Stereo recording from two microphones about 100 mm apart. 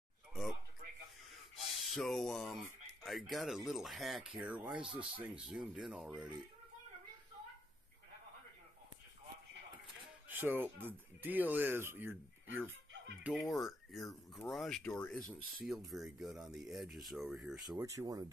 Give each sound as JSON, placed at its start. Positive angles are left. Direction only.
{"t": 0.3, "sound": "a sound", "side_deg": 0}
{"t": 1.6, "sound": "speech", "side_deg": 0}
{"t": 4.5, "sound": "speech", "side_deg": -15}
{"t": 4.8, "sound": "speech", "side_deg": -60}
{"t": 5.2, "sound": "speech", "side_deg": -5}
{"t": 10.2, "sound": "music", "side_deg": -20}
{"t": 10.8, "sound": "speech", "side_deg": -20}
{"t": 13.2, "sound": "speech", "side_deg": -5}
{"t": 17.7, "sound": "speech", "side_deg": -35}